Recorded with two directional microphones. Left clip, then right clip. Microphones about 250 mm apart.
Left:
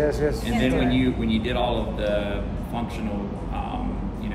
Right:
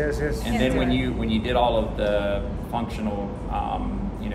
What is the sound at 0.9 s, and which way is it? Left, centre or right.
Speech, centre.